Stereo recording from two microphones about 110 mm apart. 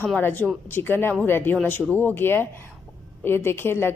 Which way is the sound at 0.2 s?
15° left (ahead or behind).